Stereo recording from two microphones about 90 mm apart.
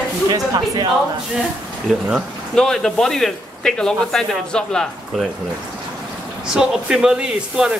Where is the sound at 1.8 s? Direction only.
5° right (ahead or behind).